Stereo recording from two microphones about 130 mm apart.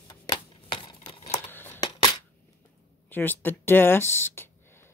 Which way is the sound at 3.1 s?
15° left (ahead or behind).